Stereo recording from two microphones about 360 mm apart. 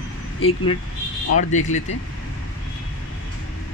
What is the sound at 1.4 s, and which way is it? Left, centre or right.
Speech, centre.